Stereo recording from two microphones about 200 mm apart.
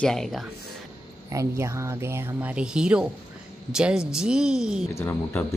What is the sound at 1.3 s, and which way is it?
Speech, 15° right (ahead or behind).